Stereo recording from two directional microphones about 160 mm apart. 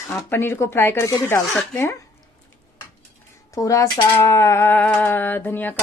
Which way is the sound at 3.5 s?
20° left (ahead or behind).